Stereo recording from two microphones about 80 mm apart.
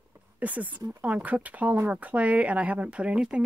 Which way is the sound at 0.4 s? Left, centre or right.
Centre.